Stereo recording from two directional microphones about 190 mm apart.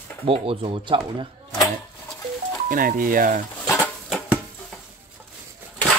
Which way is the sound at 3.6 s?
10° left (ahead or behind).